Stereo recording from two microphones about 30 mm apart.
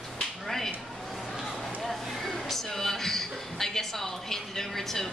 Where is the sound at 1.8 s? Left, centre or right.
Centre.